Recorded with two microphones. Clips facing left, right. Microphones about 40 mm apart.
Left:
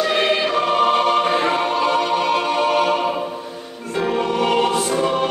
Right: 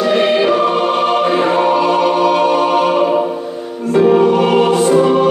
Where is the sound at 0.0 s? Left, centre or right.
Centre.